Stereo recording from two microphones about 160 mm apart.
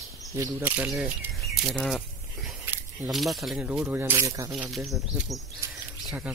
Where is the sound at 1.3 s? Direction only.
Centre (ahead or behind).